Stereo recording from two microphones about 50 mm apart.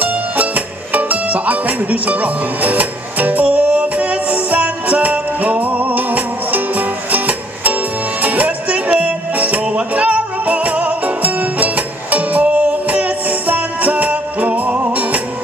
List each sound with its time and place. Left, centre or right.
0.0 s music: right